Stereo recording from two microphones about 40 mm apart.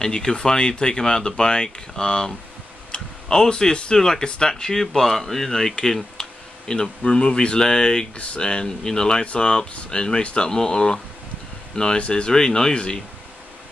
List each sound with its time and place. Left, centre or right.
0.0 s speech: centre
6.7 s speech: left